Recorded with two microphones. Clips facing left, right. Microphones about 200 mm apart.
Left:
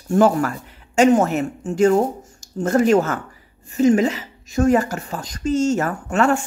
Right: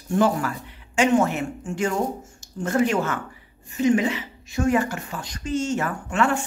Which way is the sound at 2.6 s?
40° left (ahead or behind).